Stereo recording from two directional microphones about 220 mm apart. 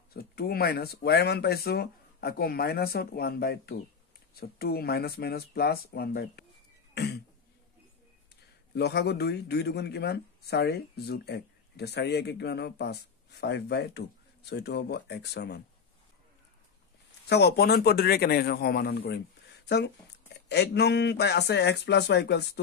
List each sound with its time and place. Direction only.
0.1 s speech: 45° left (ahead or behind)
6.9 s cough: 50° left (ahead or behind)
8.7 s speech: 45° left (ahead or behind)
17.3 s speech: 50° left (ahead or behind)